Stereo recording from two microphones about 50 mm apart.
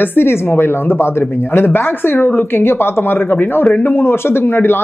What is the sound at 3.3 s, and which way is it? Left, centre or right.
Speech, left.